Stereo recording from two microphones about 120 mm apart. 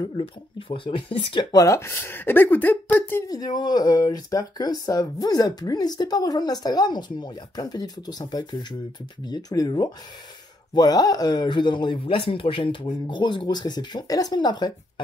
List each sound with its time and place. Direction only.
0.2 s speech: 50° left (ahead or behind)
1.5 s speech: 30° left (ahead or behind)
3.3 s speech: 35° left (ahead or behind)